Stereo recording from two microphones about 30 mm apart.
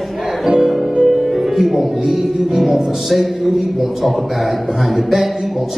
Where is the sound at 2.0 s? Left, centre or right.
Centre.